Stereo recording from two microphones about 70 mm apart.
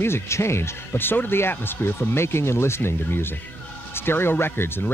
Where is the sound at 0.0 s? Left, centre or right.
Left.